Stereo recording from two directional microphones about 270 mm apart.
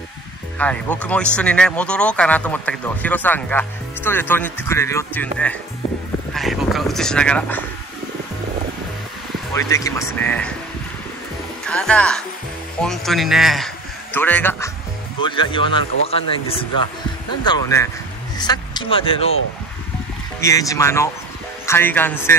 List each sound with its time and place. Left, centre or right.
0.6 s speech: centre
9.5 s a man's voice: centre
11.6 s a man's voice: centre
15.2 s a man's voice: centre
20.3 s a man's voice: centre